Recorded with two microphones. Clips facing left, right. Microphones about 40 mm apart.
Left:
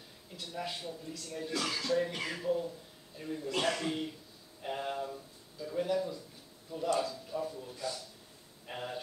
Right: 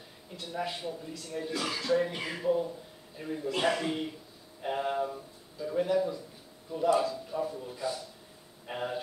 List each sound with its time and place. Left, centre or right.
0.3 s speech: centre